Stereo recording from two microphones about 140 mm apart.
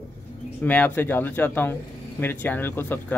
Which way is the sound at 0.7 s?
10° left (ahead or behind).